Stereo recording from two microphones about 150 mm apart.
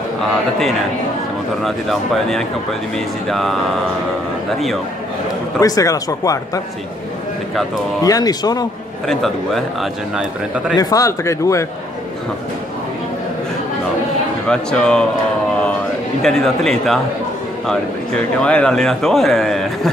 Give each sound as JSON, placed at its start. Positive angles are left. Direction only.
{"t": 1.6, "sound": "speech", "side_deg": 0}
{"t": 5.6, "sound": "speech", "side_deg": 25}
{"t": 8.0, "sound": "speech", "side_deg": 25}
{"t": 9.0, "sound": "speech", "side_deg": 0}
{"t": 10.8, "sound": "speech", "side_deg": 25}
{"t": 14.5, "sound": "speech", "side_deg": 5}
{"t": 16.2, "sound": "speech", "side_deg": 0}
{"t": 18.4, "sound": "speech", "side_deg": 5}